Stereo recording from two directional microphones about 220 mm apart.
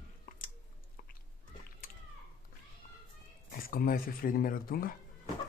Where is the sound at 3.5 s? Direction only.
45° left (ahead or behind).